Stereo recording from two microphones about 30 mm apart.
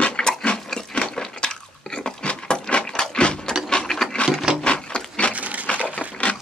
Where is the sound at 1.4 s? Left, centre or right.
Left.